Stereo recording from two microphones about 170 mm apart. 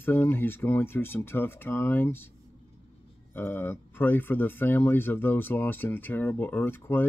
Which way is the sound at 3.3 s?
10° left (ahead or behind).